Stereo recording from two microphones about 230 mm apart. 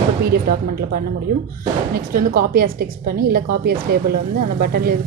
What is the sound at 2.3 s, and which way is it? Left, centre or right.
A woman's voice, right.